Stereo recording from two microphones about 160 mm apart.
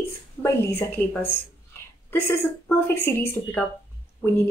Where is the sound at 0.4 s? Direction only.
15° left (ahead or behind).